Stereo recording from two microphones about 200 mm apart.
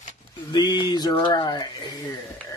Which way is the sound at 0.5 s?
20° left (ahead or behind).